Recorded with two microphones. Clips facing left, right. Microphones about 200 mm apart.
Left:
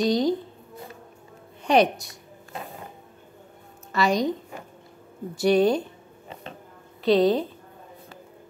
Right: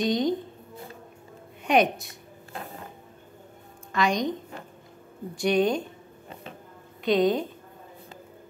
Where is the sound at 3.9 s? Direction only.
5° left (ahead or behind).